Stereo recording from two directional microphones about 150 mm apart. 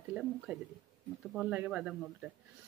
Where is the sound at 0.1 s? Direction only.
5° right (ahead or behind).